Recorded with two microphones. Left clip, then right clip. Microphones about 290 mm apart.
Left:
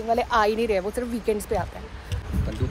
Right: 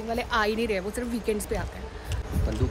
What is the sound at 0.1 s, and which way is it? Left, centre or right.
Speech, centre.